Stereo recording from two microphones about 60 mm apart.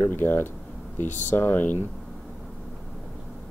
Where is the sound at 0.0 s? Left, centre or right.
Left.